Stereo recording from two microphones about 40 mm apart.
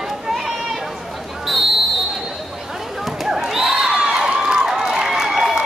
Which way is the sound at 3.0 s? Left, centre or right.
Centre.